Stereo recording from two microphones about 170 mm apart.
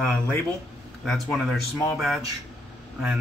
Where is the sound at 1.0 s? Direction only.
Centre (ahead or behind).